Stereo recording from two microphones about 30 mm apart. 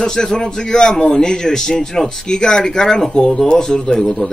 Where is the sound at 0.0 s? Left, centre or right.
Centre.